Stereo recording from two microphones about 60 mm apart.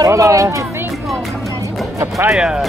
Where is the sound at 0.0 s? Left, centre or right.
Right.